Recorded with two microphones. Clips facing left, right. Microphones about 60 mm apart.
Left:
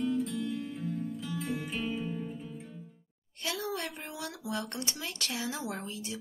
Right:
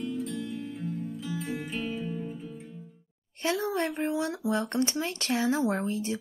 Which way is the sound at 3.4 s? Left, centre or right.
Right.